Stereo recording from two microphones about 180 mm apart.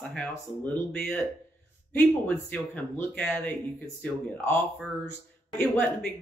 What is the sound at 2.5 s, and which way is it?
Speech, 10° left (ahead or behind).